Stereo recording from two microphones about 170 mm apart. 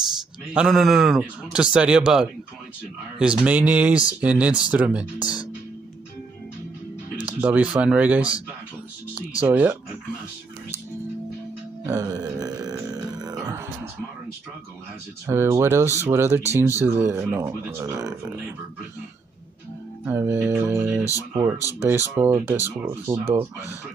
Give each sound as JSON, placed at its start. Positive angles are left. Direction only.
{"t": 0.5, "sound": "a man's voice", "side_deg": -5}
{"t": 7.3, "sound": "speech", "side_deg": -10}
{"t": 11.8, "sound": "grunt", "side_deg": -20}
{"t": 13.2, "sound": "music", "side_deg": -20}
{"t": 15.2, "sound": "speech", "side_deg": -15}
{"t": 20.1, "sound": "speech", "side_deg": -15}